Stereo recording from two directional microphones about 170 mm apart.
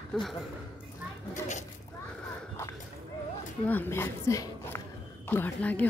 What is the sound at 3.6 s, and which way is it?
A woman's voice, 10° left (ahead or behind).